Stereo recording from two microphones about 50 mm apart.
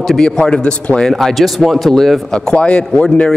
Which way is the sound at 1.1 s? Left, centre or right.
Centre.